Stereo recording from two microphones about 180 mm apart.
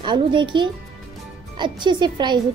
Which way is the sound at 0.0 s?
25° right (ahead or behind).